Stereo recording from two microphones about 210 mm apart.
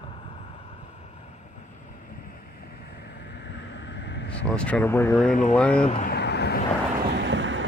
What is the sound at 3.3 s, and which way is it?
Vehicle, 55° left (ahead or behind).